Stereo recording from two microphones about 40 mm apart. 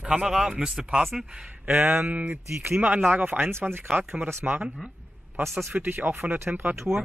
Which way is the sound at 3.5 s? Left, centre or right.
Right.